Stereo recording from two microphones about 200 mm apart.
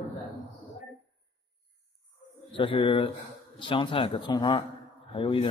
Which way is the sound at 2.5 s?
25° left (ahead or behind).